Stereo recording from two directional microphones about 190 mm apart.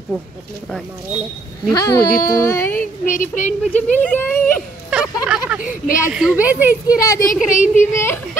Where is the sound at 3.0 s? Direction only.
40° left (ahead or behind).